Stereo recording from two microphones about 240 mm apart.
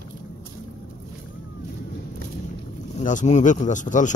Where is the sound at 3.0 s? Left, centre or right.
Left.